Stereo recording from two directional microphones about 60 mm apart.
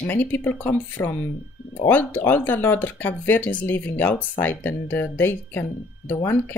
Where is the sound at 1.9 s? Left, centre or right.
Left.